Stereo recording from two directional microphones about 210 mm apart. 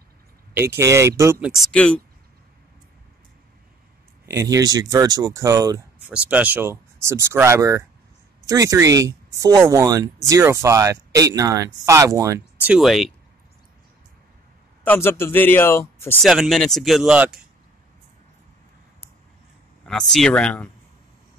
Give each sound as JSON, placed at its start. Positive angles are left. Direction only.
{"t": 0.7, "sound": "speech", "side_deg": -15}
{"t": 1.7, "sound": "speech", "side_deg": 5}
{"t": 4.3, "sound": "speech", "side_deg": -15}
{"t": 14.9, "sound": "speech", "side_deg": 10}
{"t": 16.2, "sound": "speech", "side_deg": 0}
{"t": 19.8, "sound": "speech", "side_deg": 5}